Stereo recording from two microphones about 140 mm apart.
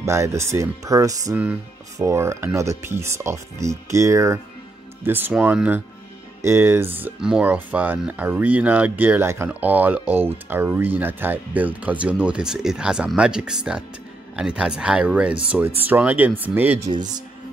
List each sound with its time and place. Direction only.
0.0 s speech: 20° right (ahead or behind)
1.3 s speech: 10° right (ahead or behind)